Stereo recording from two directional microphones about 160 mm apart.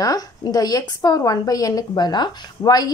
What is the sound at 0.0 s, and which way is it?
A woman's voice, 25° left (ahead or behind).